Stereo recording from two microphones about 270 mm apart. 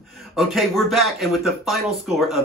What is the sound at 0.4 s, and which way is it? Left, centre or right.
Speech, centre.